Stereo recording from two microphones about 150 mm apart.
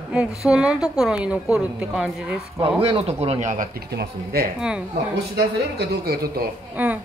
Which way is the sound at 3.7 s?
90° right.